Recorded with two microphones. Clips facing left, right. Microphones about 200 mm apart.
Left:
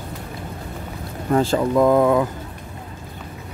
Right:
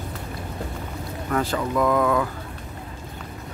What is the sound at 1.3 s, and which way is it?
Speech, 30° left (ahead or behind).